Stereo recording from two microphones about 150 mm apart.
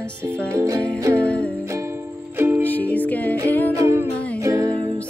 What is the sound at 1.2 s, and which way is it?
Music, 10° left (ahead or behind).